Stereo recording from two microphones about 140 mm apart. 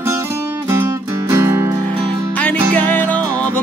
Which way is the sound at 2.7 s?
10° left (ahead or behind).